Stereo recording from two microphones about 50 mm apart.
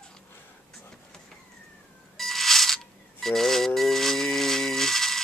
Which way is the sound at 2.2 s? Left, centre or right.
Centre.